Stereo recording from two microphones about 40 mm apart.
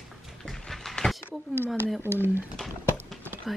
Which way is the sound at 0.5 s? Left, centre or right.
Centre.